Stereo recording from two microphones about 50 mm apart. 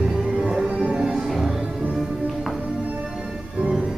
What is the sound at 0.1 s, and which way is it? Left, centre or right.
Music, centre.